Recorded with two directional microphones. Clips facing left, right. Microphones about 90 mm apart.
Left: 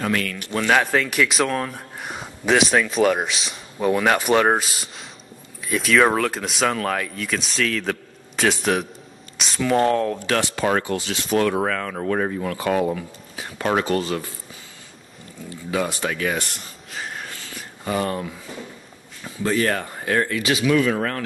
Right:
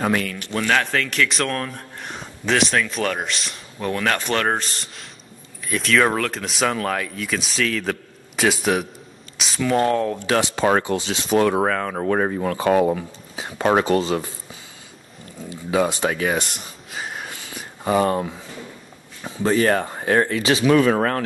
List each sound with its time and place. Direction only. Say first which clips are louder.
0.7 s speech: left 2 dB; 10° left (ahead or behind)
3.9 s speech: left 4 dB; 10° left (ahead or behind)
10.2 s speech: right 2 dB; 15° right (ahead or behind); by 12.0 s 30° right (ahead or behind)
12.0 s speech: right 2 dB; 50° right (ahead or behind)
13.4 s speech: right 4 dB; 35° right (ahead or behind)
15.5 s speech: right 4 dB; 25° right (ahead or behind)
16.9 s wheeze: right 1 dB; 5° right (ahead or behind)
17.2 s a sound: right 1 dB; 15° right (ahead or behind)
18.0 s speech: right 5 dB; 25° right (ahead or behind)
20.6 s speech: right 4 dB; 50° right (ahead or behind)